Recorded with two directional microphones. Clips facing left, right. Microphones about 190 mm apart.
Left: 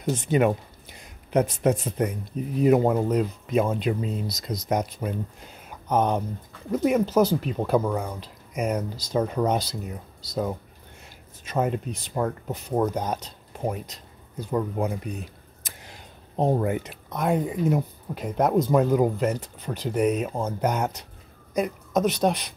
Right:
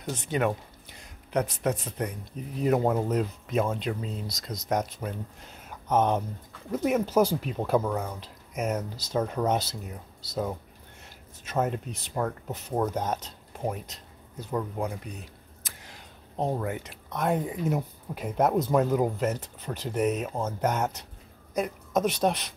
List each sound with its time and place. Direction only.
0.0 s speech: 10° left (ahead or behind)
1.3 s speech: 25° left (ahead or behind)
2.6 s speech: 5° left (ahead or behind)
3.6 s speech: 10° left (ahead or behind)
12.1 s speech: 10° left (ahead or behind)
12.8 s speech: 5° right (ahead or behind)
14.6 s speech: 15° left (ahead or behind)
15.6 s a sound: 15° left (ahead or behind)
16.4 s speech: 25° left (ahead or behind)
16.8 s speech: centre (ahead or behind)